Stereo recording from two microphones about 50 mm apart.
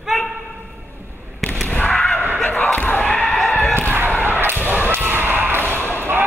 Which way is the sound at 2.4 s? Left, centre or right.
Left.